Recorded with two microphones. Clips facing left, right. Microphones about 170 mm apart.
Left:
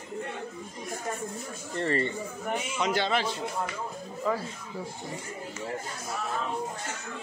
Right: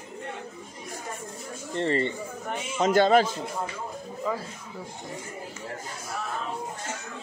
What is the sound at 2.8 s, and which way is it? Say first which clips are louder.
Speech: right 9 dB; 45° right (ahead or behind).